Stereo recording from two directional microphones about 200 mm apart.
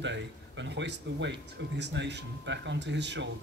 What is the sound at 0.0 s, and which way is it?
Speech, 65° right (ahead or behind).